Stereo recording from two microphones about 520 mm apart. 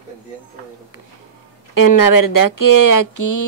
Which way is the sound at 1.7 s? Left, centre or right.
Left.